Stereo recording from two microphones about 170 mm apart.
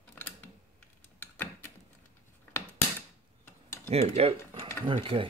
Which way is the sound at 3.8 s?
35° right (ahead or behind).